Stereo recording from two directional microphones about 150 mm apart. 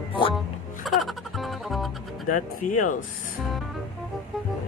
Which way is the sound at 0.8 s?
Centre (ahead or behind).